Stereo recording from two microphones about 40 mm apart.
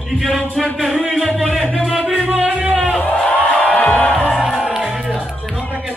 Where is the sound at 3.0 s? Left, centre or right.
Left.